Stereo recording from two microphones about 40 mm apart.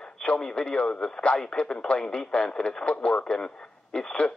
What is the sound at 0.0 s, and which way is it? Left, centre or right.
Speech, left.